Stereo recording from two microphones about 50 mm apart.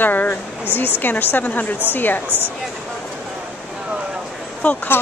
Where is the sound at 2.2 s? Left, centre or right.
Right.